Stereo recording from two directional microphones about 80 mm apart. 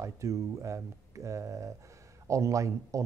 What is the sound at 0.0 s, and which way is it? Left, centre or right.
Speech, right.